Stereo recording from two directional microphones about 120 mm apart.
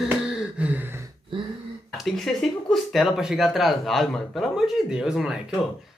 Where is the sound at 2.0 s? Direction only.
Centre (ahead or behind).